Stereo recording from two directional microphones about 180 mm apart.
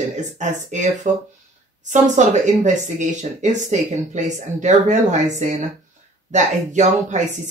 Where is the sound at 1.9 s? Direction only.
40° right (ahead or behind).